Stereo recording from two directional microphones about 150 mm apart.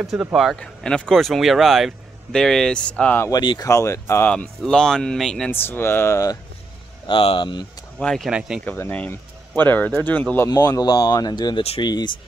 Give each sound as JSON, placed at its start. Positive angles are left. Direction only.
{"t": 0.0, "sound": "speech", "side_deg": 0}
{"t": 3.3, "sound": "speech", "side_deg": 25}
{"t": 5.5, "sound": "speech", "side_deg": 15}
{"t": 7.1, "sound": "speech", "side_deg": 35}
{"t": 8.0, "sound": "speech", "side_deg": 5}
{"t": 8.6, "sound": "speech", "side_deg": 15}
{"t": 10.5, "sound": "speech", "side_deg": 25}